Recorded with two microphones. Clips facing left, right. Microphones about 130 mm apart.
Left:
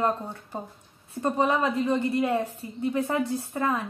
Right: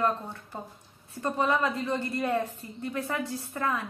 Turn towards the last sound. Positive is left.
turn(degrees=20)  # may be behind; listen again after turning